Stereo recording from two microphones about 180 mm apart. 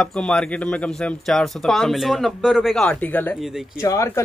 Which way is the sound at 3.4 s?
Centre (ahead or behind).